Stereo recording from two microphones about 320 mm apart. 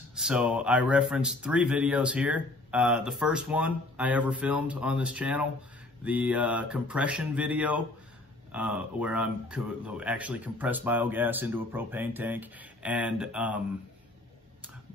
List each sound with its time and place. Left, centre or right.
0.1 s speech: centre